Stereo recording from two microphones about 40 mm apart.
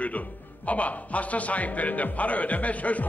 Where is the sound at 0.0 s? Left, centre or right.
Left.